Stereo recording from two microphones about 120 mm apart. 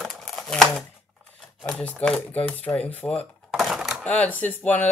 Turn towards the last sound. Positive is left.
turn(degrees=15)  # may be behind; listen again after turning